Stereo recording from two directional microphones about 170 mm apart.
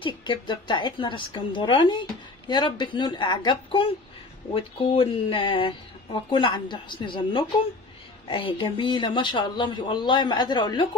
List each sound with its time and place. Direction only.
0.0 s a woman's voice: 30° left (ahead or behind)